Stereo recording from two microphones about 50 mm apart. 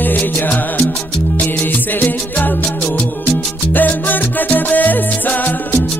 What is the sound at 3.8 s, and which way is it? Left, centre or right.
Music, left.